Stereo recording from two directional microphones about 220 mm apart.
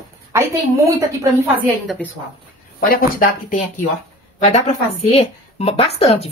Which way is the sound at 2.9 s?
40° left (ahead or behind).